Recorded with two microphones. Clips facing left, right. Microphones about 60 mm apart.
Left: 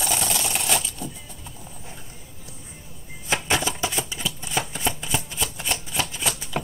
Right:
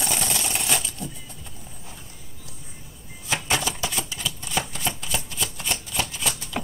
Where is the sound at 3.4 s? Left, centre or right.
Left.